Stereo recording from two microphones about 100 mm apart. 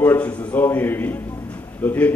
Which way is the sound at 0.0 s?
20° left (ahead or behind).